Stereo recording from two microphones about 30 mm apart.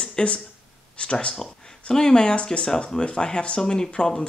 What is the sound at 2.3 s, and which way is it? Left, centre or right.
Speech, left.